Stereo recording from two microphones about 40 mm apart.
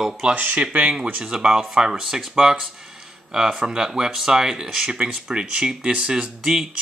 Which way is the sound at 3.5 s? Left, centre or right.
Right.